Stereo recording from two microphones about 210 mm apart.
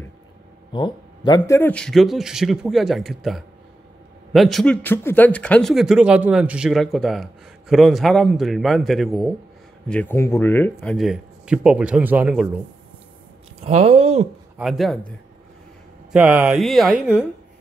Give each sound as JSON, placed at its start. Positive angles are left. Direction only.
{"t": 0.7, "sound": "speech", "side_deg": 20}
{"t": 1.6, "sound": "a man's voice", "side_deg": 5}
{"t": 13.7, "sound": "speech", "side_deg": -30}
{"t": 14.6, "sound": "a man's voice", "side_deg": 0}